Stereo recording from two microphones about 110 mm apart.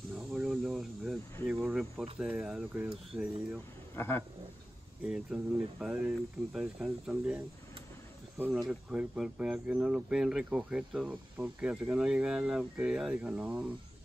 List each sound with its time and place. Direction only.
0.1 s snake: 5° right (ahead or behind)
1.5 s cricket: 5° right (ahead or behind)
2.1 s speech: 10° right (ahead or behind)
3.9 s speech: 20° left (ahead or behind)
5.0 s speech: 10° right (ahead or behind)
8.5 s speech: 10° right (ahead or behind)